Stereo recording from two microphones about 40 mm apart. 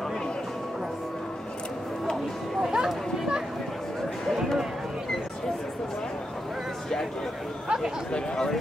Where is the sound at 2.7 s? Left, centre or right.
Centre.